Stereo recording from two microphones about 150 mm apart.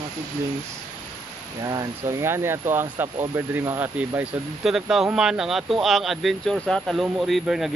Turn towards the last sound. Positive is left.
turn(degrees=0)  # may be behind; listen again after turning